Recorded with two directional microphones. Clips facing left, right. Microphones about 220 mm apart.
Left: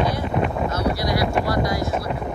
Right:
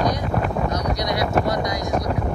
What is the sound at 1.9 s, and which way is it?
Boat, 5° left (ahead or behind).